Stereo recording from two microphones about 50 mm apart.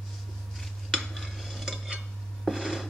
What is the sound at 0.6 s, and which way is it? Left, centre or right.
Stir, centre.